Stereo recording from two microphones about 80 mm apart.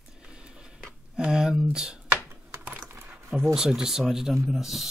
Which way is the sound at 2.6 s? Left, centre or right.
Right.